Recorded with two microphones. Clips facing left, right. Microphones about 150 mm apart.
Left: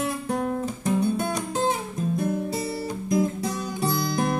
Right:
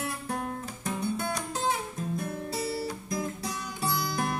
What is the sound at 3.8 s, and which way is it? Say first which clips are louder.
Music: left 5 dB; 20° left (ahead or behind).